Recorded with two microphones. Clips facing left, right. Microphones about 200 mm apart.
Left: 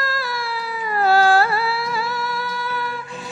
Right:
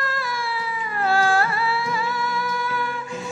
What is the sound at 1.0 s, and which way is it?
Music, 35° left (ahead or behind).